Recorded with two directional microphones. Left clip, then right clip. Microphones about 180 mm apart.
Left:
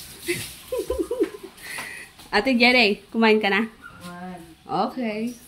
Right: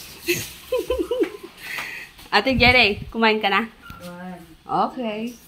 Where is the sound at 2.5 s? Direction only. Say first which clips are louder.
Right 1 dB; 30° left (ahead or behind).